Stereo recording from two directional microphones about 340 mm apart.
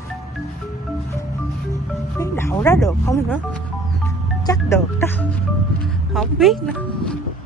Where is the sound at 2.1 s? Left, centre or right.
Centre.